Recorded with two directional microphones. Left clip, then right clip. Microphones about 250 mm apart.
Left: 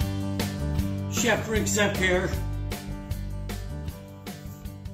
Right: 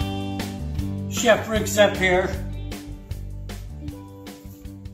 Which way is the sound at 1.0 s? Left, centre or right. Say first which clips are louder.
Right 7 dB; centre.